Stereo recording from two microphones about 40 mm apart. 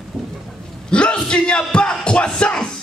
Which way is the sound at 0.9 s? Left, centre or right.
Left.